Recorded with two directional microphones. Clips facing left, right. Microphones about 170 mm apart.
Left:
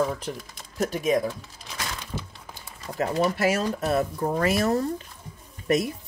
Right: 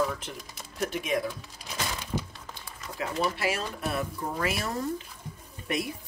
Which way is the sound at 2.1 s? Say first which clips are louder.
Right 4 dB; 10° right (ahead or behind).